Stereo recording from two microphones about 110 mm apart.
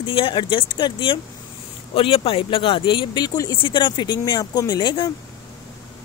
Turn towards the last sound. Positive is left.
turn(degrees=40)  # may be behind; listen again after turning